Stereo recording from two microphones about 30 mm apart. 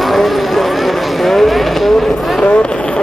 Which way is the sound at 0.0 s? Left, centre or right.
Centre.